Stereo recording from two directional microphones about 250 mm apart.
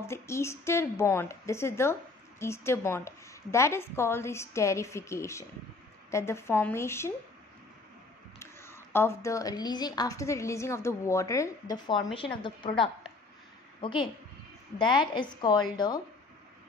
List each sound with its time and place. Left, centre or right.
0.0 s a woman's voice: centre
8.4 s a woman's voice: centre
13.7 s a woman's voice: centre